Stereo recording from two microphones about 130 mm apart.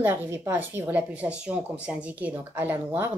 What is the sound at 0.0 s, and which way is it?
Speech, 15° right (ahead or behind).